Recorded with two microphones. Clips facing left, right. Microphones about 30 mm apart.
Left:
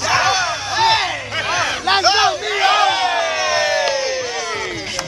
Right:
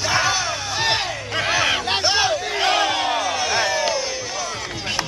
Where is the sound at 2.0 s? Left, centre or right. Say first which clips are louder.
Left 5 dB; left.